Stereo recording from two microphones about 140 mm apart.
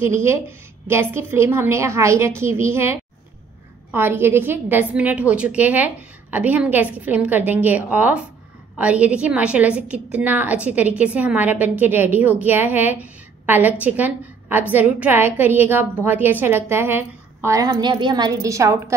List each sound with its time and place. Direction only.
0.0 s a woman's voice: 20° right (ahead or behind)